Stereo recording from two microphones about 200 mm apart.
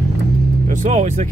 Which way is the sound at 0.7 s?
40° right (ahead or behind).